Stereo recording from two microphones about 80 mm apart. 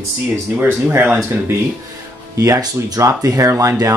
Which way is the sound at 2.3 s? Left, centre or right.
Right.